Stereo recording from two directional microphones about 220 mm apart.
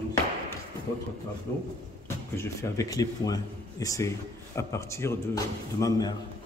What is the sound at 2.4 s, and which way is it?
Speech, 15° left (ahead or behind).